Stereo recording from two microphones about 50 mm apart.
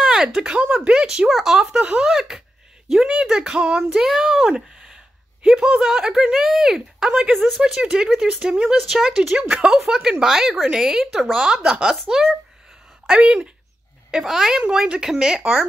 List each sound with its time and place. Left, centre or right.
0.0 s speech: centre
7.1 s speech: right
7.3 s speech: centre
7.6 s speech: centre